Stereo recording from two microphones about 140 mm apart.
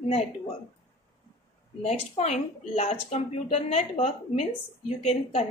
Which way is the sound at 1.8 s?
50° left (ahead or behind).